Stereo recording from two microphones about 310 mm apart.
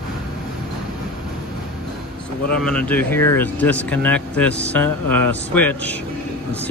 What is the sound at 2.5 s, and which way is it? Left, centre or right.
Speech, centre.